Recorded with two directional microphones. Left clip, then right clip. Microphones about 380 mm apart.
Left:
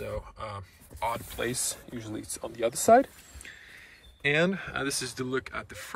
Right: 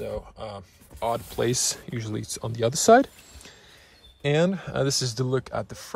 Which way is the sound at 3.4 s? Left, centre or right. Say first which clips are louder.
Left 6 dB; centre.